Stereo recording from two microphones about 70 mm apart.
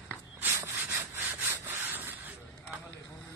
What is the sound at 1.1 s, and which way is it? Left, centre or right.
Sawing, right.